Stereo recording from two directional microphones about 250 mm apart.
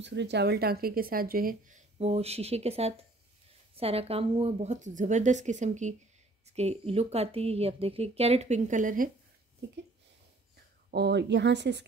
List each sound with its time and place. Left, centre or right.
0.0 s a woman's voice: right
10.9 s speech: right